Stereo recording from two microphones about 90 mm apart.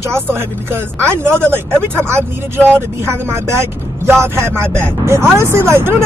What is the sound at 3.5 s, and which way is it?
Speech, 25° right (ahead or behind).